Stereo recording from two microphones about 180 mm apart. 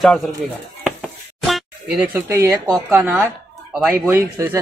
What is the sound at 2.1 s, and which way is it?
Speech, 15° right (ahead or behind).